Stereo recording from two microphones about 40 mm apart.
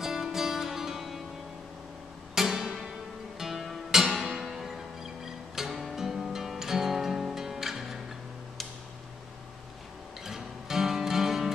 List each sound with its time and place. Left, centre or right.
0.0 s music: centre
2.3 s music: centre
10.2 s music: centre